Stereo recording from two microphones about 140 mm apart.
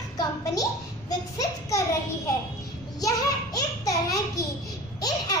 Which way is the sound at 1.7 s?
20° left (ahead or behind).